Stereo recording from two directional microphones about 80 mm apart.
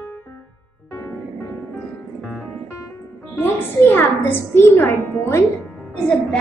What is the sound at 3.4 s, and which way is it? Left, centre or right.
A woman's voice, left.